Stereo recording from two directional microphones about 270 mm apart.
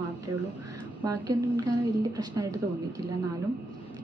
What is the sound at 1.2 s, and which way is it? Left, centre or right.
A woman's voice, centre.